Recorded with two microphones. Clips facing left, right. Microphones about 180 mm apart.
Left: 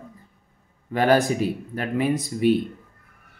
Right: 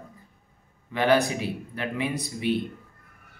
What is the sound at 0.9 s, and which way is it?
Speech, 45° left (ahead or behind).